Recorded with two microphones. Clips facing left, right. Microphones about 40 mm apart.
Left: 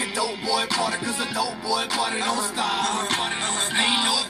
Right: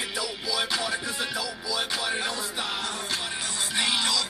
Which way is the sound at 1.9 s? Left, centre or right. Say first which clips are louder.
Left 5 dB; left.